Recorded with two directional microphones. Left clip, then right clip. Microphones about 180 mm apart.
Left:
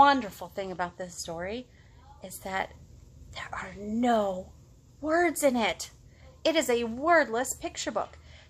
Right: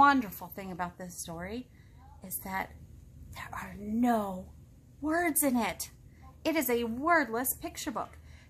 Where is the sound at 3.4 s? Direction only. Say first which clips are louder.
Left 3 dB; 15° left (ahead or behind).